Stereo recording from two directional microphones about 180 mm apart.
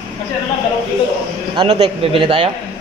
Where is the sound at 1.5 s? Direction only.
25° right (ahead or behind).